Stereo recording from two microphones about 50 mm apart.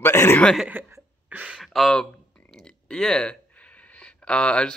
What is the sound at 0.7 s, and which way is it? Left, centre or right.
Chuckle, right.